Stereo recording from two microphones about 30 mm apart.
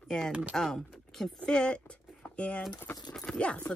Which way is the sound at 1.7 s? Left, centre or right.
Left.